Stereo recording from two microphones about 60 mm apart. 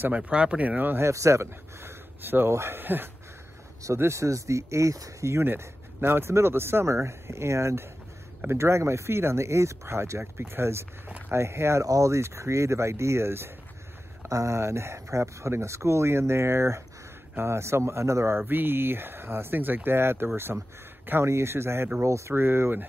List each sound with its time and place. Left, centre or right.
0.1 s speech: right
1.0 s speech: right
3.8 s speech: right
5.4 s speech: right
11.1 s walk: right
11.3 s speech: right
11.8 s speech: right
14.3 s speech: right
18.4 s speech: right
22.0 s speech: right
22.3 s speech: right